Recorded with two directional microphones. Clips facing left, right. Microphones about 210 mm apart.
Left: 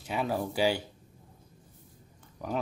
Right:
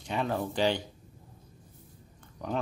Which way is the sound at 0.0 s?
5° left (ahead or behind).